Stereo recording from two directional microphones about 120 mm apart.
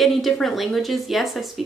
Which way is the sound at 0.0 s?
Centre (ahead or behind).